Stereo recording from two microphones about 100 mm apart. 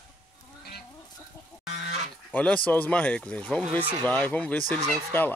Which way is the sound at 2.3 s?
15° left (ahead or behind).